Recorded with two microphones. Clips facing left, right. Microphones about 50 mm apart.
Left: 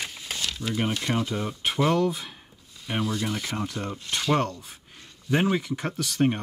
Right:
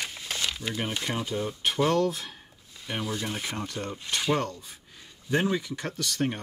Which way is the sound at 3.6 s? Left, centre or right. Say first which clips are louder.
Left 2 dB; centre.